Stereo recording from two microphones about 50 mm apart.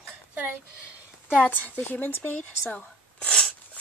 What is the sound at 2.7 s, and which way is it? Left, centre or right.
Speech, left.